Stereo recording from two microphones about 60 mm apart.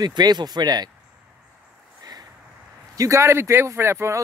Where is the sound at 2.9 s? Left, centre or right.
Right.